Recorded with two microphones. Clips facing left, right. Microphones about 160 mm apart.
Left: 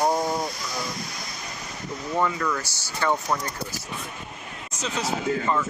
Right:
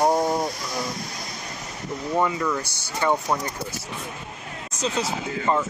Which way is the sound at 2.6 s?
60° right (ahead or behind).